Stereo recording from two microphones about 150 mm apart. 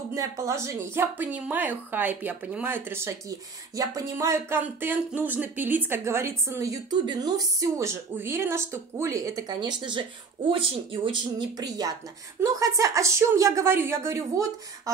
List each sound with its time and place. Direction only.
0.1 s a woman's voice: 20° right (ahead or behind)